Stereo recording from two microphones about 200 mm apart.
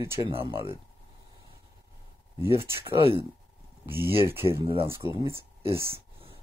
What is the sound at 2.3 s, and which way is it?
Speech, 15° right (ahead or behind).